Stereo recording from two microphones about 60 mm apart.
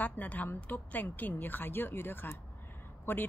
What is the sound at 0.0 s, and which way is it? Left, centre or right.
Speech, left.